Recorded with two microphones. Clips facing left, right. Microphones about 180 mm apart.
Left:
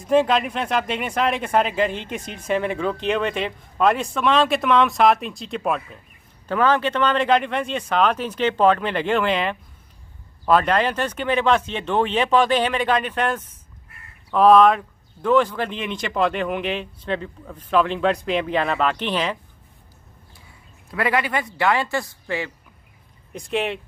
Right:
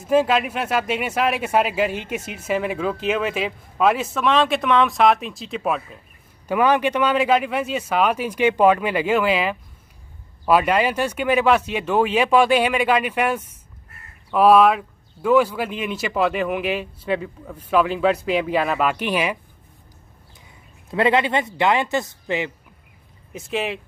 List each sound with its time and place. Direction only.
0.0 s speech: 5° right (ahead or behind)
6.4 s speech: 10° right (ahead or behind)
20.9 s speech: 25° right (ahead or behind)
23.3 s speech: centre (ahead or behind)